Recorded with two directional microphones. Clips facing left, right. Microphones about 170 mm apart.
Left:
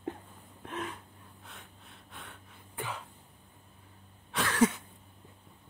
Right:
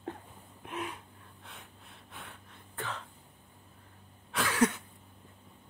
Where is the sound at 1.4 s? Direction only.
Centre (ahead or behind).